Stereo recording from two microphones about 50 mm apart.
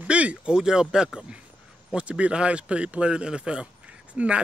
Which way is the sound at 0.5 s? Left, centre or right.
Centre.